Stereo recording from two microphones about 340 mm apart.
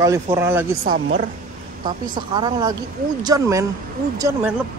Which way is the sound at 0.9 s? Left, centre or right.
Right.